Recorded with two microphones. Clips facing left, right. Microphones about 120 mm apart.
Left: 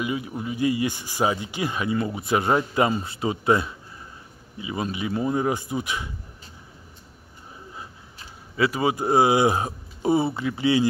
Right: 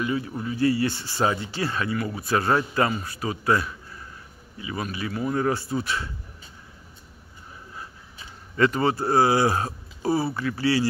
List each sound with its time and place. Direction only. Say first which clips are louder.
0.0 s a man's voice: right 1 dB; 15° left (ahead or behind)
8.5 s speech: right 1 dB; 10° left (ahead or behind)